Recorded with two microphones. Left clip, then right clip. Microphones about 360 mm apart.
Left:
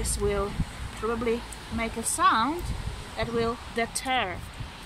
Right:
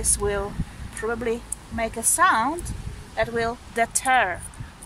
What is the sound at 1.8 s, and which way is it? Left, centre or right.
Speech, right.